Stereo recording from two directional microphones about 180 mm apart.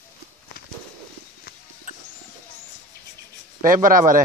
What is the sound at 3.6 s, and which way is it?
Speech, 50° right (ahead or behind).